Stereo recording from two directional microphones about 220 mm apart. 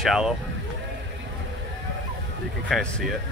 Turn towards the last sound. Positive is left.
turn(degrees=5)  # may be behind; listen again after turning